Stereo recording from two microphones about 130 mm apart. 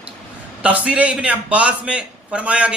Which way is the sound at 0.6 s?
10° right (ahead or behind).